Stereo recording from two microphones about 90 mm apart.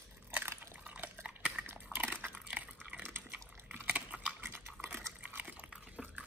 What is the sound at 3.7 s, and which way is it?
Biting, 20° right (ahead or behind).